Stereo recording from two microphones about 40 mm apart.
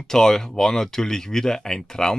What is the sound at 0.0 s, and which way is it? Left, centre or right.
Speech, centre.